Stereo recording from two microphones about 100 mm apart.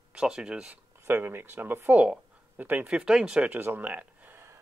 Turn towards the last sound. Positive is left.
turn(degrees=-15)  # may be behind; listen again after turning